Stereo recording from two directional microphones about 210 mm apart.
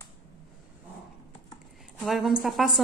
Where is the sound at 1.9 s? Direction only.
Centre (ahead or behind).